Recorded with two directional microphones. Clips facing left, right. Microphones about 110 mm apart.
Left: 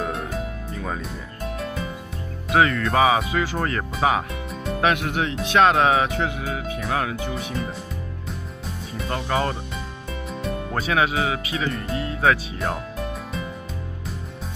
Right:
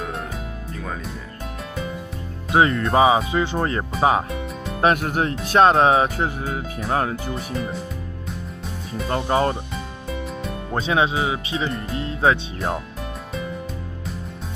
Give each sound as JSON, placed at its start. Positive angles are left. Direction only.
{"t": 0.0, "sound": "music", "side_deg": 0}
{"t": 2.5, "sound": "speech", "side_deg": -30}
{"t": 7.2, "sound": "speech", "side_deg": 0}
{"t": 9.1, "sound": "speech", "side_deg": -30}
{"t": 10.7, "sound": "speech", "side_deg": -25}